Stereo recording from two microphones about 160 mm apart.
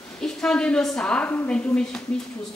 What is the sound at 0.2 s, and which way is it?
A woman's voice, 5° left (ahead or behind).